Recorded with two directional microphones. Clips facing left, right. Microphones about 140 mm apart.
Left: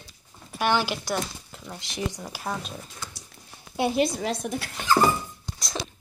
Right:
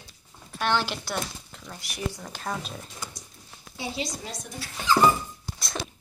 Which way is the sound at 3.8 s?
60° left (ahead or behind).